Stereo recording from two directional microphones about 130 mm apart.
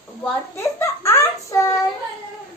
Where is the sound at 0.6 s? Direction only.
20° left (ahead or behind).